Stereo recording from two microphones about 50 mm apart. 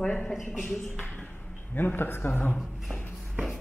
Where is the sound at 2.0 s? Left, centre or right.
Left.